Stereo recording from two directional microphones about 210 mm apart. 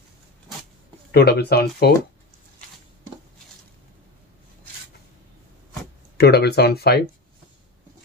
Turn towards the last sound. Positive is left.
turn(degrees=50)  # may be behind; listen again after turning